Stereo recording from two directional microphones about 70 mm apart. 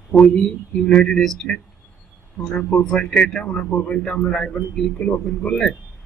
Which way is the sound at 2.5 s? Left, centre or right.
Centre.